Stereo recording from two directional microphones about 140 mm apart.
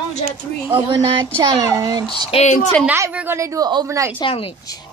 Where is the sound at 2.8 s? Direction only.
20° right (ahead or behind).